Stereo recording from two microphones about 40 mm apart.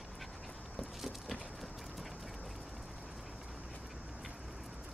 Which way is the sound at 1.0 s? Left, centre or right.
Centre.